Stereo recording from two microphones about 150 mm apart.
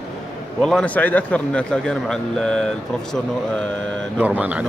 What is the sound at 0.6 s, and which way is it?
A man's voice, 5° left (ahead or behind).